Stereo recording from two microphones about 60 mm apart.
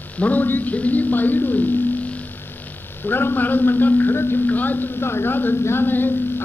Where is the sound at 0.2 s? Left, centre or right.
Left.